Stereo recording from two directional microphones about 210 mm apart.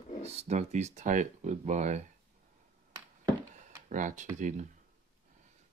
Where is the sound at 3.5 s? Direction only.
35° right (ahead or behind).